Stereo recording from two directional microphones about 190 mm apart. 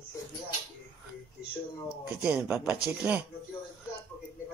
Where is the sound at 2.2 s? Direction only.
5° right (ahead or behind).